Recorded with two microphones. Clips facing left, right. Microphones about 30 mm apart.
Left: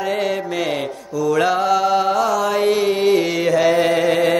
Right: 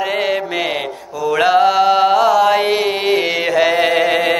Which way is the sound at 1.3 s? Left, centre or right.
Right.